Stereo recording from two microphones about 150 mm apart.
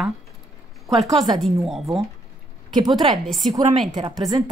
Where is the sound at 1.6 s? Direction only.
Centre (ahead or behind).